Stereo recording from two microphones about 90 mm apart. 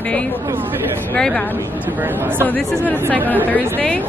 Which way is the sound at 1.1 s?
5° left (ahead or behind).